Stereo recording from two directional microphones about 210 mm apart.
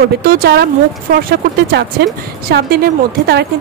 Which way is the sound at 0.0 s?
45° right (ahead or behind).